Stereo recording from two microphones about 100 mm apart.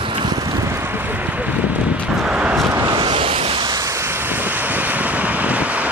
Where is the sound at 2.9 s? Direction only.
60° right (ahead or behind).